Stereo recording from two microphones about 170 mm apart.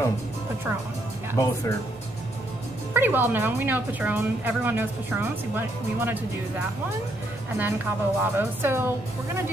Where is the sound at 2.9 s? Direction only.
10° right (ahead or behind).